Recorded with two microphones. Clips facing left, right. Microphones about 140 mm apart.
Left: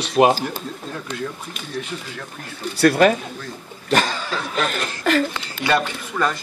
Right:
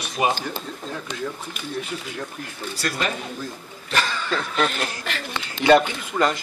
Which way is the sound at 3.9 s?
45° left (ahead or behind).